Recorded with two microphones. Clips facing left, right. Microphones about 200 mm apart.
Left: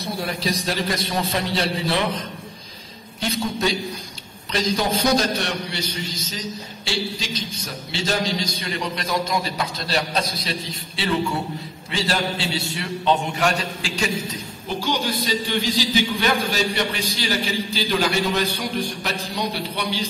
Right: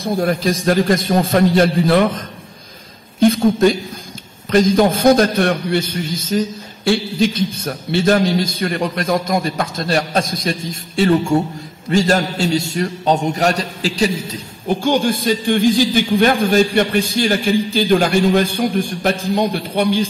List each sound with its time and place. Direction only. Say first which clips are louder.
0.0 s a man's voice: right 9 dB; 50° right (ahead or behind)
14.7 s a man's voice: right 9 dB; 50° right (ahead or behind)